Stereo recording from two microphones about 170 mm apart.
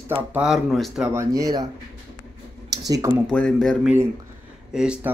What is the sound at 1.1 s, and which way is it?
Speech, 20° right (ahead or behind).